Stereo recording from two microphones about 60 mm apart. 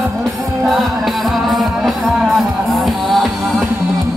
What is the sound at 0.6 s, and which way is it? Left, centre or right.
Music, centre.